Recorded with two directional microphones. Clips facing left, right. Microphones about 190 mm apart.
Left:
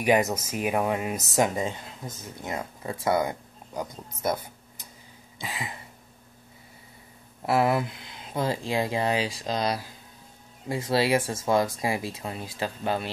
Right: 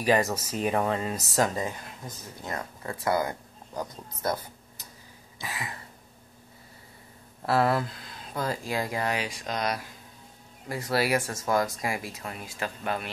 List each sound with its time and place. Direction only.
0.0 s speech: 20° left (ahead or behind)
5.4 s speech: 20° left (ahead or behind)
7.4 s speech: 20° left (ahead or behind)